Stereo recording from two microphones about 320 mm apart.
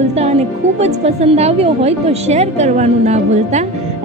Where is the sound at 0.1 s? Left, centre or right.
Centre.